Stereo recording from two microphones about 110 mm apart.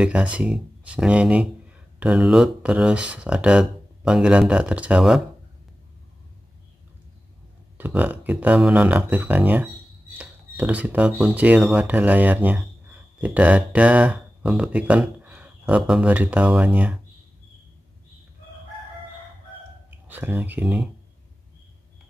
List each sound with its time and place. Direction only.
0.0 s speech: 10° right (ahead or behind)
7.7 s speech: 15° right (ahead or behind)
20.1 s speech: 15° right (ahead or behind)
20.6 s speech: 5° right (ahead or behind)